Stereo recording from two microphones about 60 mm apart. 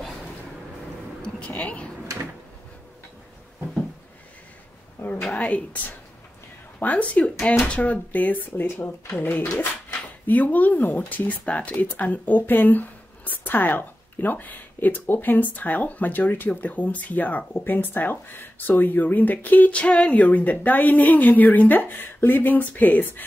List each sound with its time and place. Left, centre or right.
1.5 s speech: left
5.0 s a sound: left
5.3 s speech: centre